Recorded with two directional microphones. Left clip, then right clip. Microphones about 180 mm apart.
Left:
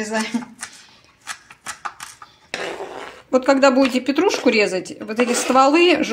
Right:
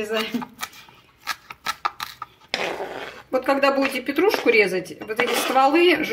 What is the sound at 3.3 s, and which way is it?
Speech, 35° left (ahead or behind).